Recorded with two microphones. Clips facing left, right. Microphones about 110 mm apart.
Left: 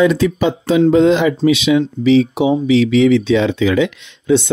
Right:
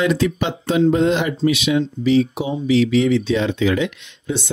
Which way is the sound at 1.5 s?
80° left.